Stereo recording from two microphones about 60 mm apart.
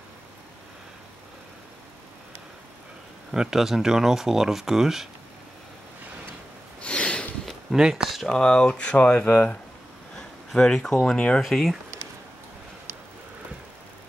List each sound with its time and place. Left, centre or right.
3.3 s speech: centre
6.8 s snort: centre
7.4 s a sound: centre
8.3 s speech: centre
10.1 s speech: centre
11.4 s speech: centre